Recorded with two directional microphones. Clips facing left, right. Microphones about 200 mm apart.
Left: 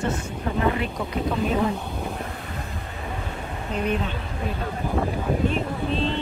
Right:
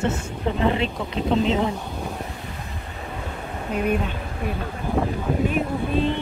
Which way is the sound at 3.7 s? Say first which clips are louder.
Right 3 dB; 10° right (ahead or behind).